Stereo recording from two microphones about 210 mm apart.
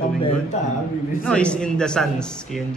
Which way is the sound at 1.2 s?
5° left (ahead or behind).